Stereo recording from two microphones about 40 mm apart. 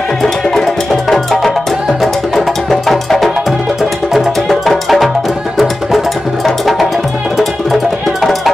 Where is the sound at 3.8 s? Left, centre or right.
Centre.